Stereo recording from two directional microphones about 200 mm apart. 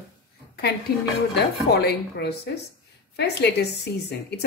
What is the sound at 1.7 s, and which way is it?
Speech, 55° left (ahead or behind).